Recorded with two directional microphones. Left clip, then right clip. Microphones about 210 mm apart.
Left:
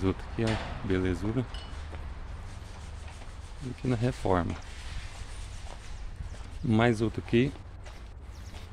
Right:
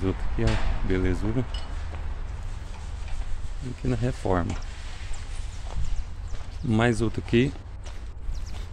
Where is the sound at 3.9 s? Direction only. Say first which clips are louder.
Right 1 dB; 10° left (ahead or behind).